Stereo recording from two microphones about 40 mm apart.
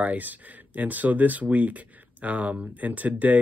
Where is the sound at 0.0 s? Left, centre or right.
Right.